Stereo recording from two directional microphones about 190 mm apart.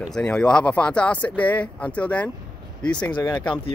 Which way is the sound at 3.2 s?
25° left (ahead or behind).